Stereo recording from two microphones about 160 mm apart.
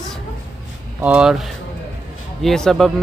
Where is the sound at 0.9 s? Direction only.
10° right (ahead or behind).